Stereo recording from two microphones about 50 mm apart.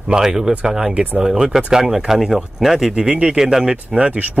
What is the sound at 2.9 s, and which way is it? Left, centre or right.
Speech, centre.